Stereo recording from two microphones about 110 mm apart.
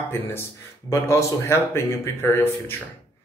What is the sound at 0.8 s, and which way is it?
Speech, 25° left (ahead or behind).